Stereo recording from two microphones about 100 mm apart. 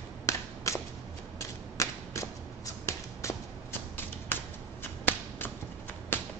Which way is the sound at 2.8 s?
30° left (ahead or behind).